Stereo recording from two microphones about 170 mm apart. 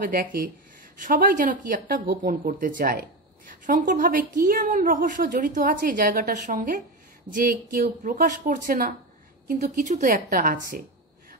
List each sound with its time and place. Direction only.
0.1 s speech: 55° right (ahead or behind)